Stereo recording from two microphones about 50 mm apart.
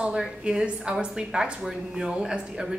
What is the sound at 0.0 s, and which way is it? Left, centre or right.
A woman's voice, centre.